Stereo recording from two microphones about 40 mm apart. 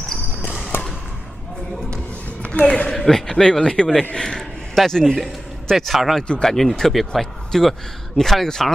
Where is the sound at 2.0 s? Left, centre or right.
Left.